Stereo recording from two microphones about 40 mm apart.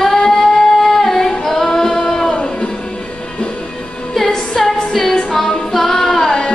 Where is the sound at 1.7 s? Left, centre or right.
Centre.